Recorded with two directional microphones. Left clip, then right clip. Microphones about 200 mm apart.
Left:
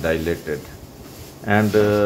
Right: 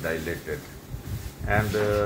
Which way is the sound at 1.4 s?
55° left (ahead or behind).